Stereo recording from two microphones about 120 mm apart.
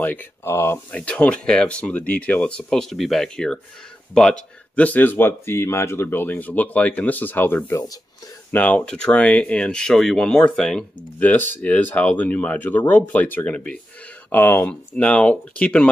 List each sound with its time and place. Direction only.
0.0 s speech: 15° left (ahead or behind)
0.9 s speech: 10° left (ahead or behind)